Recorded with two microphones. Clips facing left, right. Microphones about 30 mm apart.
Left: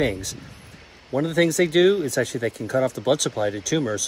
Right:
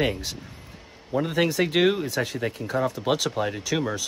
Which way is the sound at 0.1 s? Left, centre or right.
Right.